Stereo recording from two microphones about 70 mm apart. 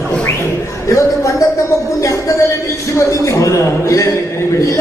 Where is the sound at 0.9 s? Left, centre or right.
Left.